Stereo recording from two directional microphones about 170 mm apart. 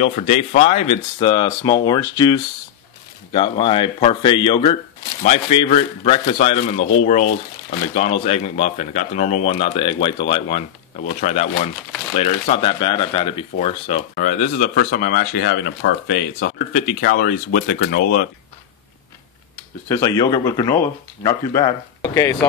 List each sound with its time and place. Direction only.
0.0 s speech: 40° left (ahead or behind)
14.1 s speech: 55° left (ahead or behind)
19.9 s speech: 20° left (ahead or behind)